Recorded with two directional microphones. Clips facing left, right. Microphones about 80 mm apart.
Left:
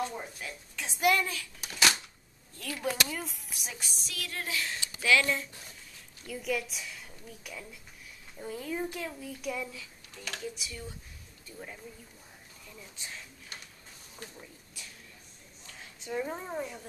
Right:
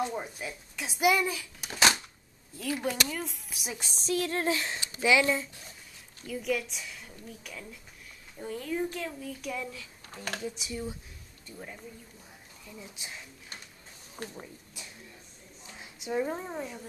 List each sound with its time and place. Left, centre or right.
0.0 s a woman's voice: centre
1.7 s speech: right
2.8 s speech: centre
3.7 s speech: right
6.2 s speech: centre
10.0 s speech: right
10.4 s speech: right
12.6 s a woman's voice: centre
15.6 s a sound: centre
16.3 s speech: centre